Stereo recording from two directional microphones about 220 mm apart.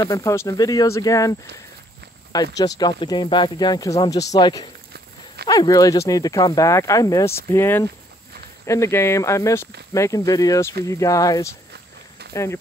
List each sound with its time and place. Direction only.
0.0 s speech: 15° left (ahead or behind)
2.3 s speech: 15° left (ahead or behind)